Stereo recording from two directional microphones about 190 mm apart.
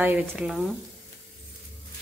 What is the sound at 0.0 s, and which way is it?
Speech, 10° right (ahead or behind).